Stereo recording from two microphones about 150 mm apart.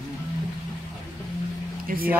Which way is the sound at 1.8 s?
75° right (ahead or behind).